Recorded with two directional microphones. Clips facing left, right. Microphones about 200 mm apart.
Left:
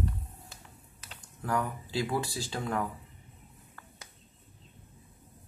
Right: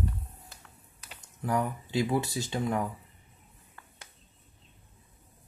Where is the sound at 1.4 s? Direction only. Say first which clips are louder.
Right 2 dB; 20° right (ahead or behind).